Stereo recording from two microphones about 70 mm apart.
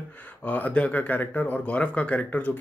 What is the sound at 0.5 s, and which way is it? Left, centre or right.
Speech, left.